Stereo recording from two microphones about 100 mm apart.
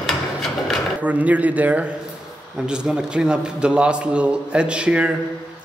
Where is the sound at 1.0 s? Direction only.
15° right (ahead or behind).